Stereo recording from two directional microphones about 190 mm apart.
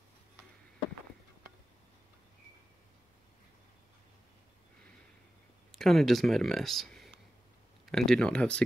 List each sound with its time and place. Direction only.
5.7 s speech: centre (ahead or behind)